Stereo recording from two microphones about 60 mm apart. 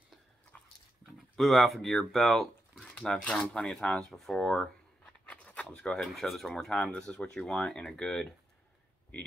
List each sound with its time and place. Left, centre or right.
1.3 s speech: centre
4.4 s speech: centre
5.3 s a sound: left
5.8 s speech: centre